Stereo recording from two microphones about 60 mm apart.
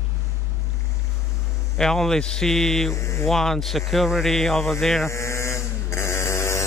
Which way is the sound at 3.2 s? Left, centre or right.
Centre.